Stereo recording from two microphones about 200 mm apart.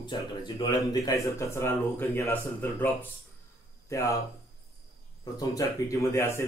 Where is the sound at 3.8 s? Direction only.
15° left (ahead or behind).